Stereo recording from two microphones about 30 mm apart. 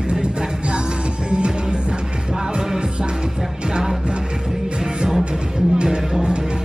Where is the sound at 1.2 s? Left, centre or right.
Right.